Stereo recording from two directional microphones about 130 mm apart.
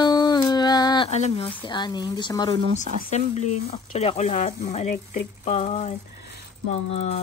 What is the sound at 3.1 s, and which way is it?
Speech, 60° left (ahead or behind).